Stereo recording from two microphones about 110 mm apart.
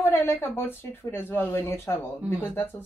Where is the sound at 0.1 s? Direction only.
20° left (ahead or behind).